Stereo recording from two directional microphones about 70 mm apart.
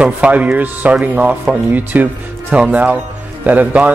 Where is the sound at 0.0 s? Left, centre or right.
Centre.